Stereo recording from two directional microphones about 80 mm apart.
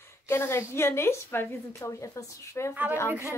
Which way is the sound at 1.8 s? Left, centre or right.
Left.